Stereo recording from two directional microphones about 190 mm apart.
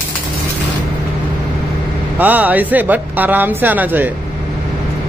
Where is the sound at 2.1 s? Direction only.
10° right (ahead or behind).